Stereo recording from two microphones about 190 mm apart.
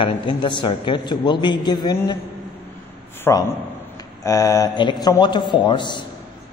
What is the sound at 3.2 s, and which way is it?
A man's voice, 20° left (ahead or behind).